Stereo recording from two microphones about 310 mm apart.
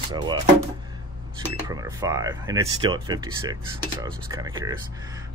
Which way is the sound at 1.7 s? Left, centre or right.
Centre.